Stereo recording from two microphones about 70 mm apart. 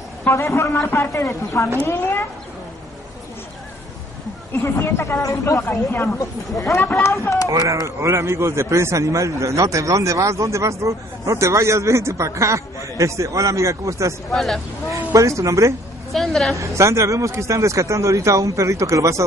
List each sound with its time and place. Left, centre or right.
0.3 s a man's voice: left
1.8 s a woman's voice: left
4.6 s a woman's voice: left
6.1 s a man's voice: left
6.8 s speech: left
7.1 s a man's voice: left
7.4 s a man's voice: right
14.3 s speech: centre
15.1 s a man's voice: right
16.1 s a woman's voice: centre
16.5 s a man's voice: right